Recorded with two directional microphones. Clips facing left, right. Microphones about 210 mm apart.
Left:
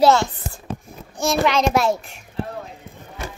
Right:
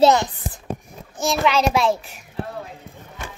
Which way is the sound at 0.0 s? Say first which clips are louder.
Even; 20° right (ahead or behind).